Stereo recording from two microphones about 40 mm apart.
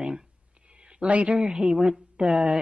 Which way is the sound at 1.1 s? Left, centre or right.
Right.